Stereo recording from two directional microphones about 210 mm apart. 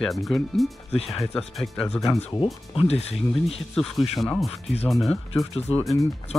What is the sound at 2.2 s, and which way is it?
Speech, 25° left (ahead or behind).